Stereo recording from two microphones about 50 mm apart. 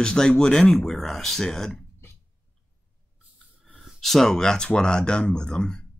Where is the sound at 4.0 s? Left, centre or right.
Centre.